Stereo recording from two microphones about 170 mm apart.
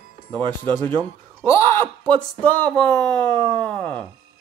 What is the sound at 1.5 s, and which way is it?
Speech, 15° left (ahead or behind).